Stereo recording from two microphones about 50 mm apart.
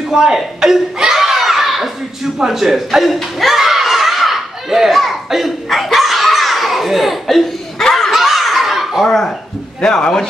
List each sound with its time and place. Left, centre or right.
0.1 s a sound: centre
7.9 s laughter: centre
9.0 s speech: centre